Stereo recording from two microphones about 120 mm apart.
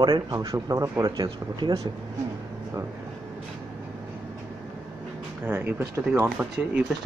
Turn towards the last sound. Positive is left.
turn(degrees=-10)  # may be behind; listen again after turning